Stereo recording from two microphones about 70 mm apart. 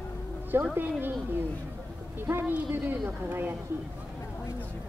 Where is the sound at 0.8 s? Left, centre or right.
Right.